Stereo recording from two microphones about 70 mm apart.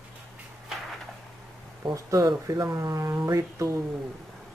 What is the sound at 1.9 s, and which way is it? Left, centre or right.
Speech, right.